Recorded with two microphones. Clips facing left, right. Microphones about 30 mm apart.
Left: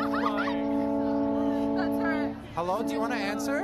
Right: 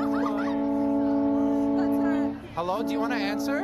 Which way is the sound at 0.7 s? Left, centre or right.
Left.